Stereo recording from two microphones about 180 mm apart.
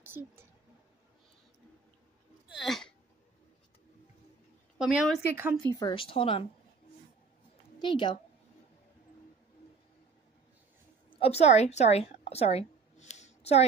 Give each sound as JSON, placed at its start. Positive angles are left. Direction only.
{"t": 0.0, "sound": "a sound", "side_deg": -10}
{"t": 2.5, "sound": "speech", "side_deg": 0}
{"t": 4.7, "sound": "a woman's voice", "side_deg": -5}
{"t": 5.3, "sound": "speech", "side_deg": -15}
{"t": 5.8, "sound": "speech", "side_deg": 25}
{"t": 7.8, "sound": "speech", "side_deg": 25}
{"t": 11.1, "sound": "a woman's voice", "side_deg": 35}